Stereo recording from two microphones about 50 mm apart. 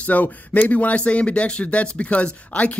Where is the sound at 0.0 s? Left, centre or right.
Left.